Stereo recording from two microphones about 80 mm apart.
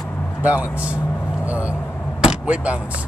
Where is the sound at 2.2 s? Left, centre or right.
Centre.